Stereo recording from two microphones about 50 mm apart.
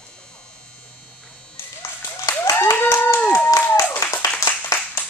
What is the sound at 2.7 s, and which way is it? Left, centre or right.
Clapping, left.